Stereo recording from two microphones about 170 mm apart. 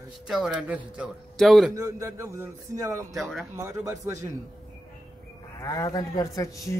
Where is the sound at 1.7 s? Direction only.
20° right (ahead or behind).